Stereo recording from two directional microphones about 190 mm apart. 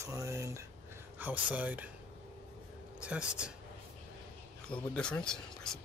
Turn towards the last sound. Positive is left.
turn(degrees=5)  # may be behind; listen again after turning